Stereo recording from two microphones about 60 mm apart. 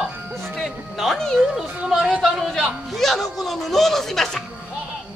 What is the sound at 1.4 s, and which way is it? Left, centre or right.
Speech, centre.